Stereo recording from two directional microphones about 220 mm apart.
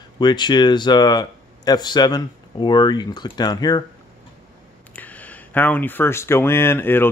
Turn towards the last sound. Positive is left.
turn(degrees=10)  # may be behind; listen again after turning